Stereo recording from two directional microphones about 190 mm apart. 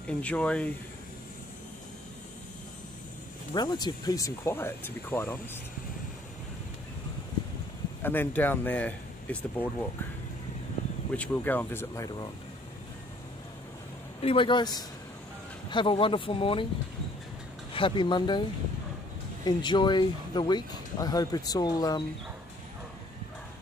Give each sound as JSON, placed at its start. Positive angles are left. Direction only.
{"t": 0.2, "sound": "speech", "side_deg": 5}
{"t": 3.5, "sound": "speech", "side_deg": 20}
{"t": 8.0, "sound": "speech", "side_deg": 10}
{"t": 11.1, "sound": "speech", "side_deg": 10}
{"t": 14.2, "sound": "speech", "side_deg": 25}
{"t": 17.7, "sound": "speech", "side_deg": 25}
{"t": 19.4, "sound": "speech", "side_deg": 25}